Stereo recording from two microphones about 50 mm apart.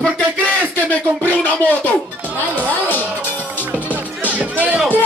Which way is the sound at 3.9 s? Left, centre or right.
Right.